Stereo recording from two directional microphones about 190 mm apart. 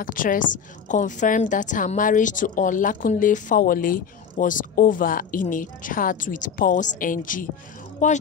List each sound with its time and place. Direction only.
0.0 s a woman's voice: 45° left (ahead or behind)